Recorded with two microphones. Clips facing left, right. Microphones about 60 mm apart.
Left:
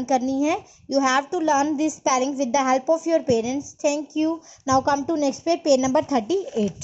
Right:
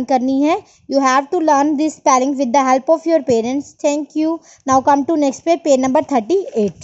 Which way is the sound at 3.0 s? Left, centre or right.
Right.